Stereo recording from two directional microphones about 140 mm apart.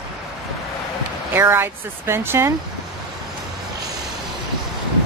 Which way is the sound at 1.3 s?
15° right (ahead or behind).